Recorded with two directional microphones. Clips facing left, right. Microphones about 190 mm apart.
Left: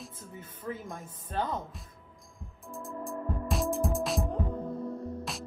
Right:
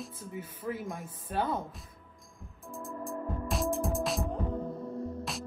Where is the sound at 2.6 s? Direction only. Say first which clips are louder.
Even; centre (ahead or behind).